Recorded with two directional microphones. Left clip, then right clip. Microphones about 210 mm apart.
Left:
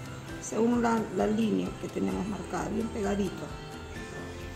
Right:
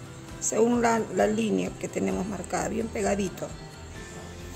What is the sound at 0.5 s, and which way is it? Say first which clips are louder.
Speech: right 4 dB; 45° right (ahead or behind).